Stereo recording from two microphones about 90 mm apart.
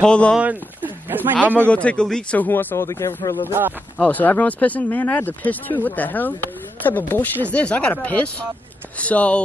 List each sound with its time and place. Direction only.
0.0 s speech: 10° left (ahead or behind)
0.4 s speech: 20° right (ahead or behind)
1.7 s speech: 15° left (ahead or behind)
2.3 s speech: 20° left (ahead or behind)
4.0 s speech: 20° left (ahead or behind)